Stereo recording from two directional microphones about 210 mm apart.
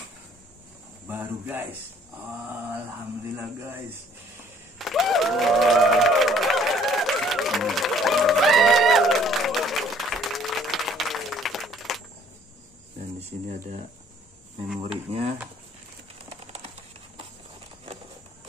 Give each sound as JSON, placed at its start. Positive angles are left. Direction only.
{"t": 1.0, "sound": "speech", "side_deg": -10}
{"t": 3.3, "sound": "speech", "side_deg": -10}
{"t": 4.7, "sound": "a sound", "side_deg": 0}
{"t": 13.2, "sound": "speech", "side_deg": -35}
{"t": 15.0, "sound": "speech", "side_deg": -30}
{"t": 16.3, "sound": "a sound", "side_deg": -30}